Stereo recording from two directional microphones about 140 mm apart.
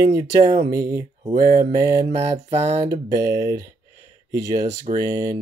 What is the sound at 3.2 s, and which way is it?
Speech, 25° right (ahead or behind).